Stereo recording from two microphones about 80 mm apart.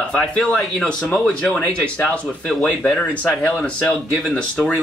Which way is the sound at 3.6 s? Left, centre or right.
Centre.